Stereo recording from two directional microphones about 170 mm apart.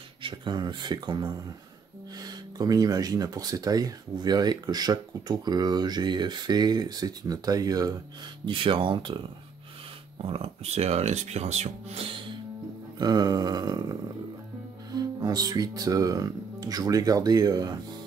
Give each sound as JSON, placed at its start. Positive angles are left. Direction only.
{"t": 0.2, "sound": "speech", "side_deg": -25}
{"t": 10.2, "sound": "speech", "side_deg": -35}
{"t": 15.0, "sound": "speech", "side_deg": -20}